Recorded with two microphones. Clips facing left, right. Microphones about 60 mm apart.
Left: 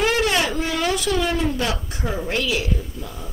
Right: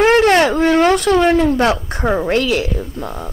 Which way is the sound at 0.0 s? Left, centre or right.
Right.